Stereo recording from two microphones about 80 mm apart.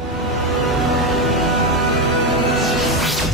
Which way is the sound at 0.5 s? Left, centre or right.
Centre.